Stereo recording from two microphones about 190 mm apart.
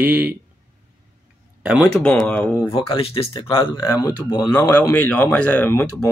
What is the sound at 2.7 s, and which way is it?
Speech, 30° left (ahead or behind).